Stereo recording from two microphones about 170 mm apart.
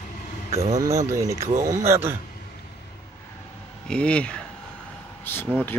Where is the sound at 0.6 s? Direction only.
45° right (ahead or behind).